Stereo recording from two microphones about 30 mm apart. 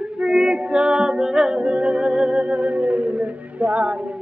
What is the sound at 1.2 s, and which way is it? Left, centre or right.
Music, right.